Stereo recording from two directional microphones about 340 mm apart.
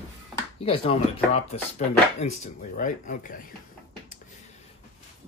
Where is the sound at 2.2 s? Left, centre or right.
Centre.